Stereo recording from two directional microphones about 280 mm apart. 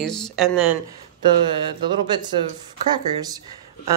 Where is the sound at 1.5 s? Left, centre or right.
Centre.